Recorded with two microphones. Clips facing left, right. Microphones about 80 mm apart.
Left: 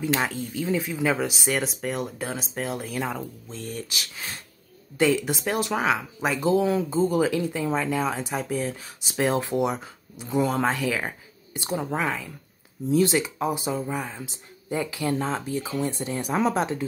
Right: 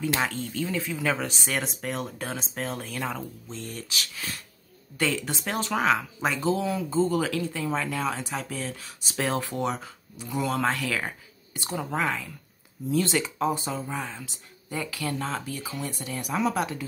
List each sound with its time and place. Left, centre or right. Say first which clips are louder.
0.0 s speech: left 2 dB; centre; by 16.8 s left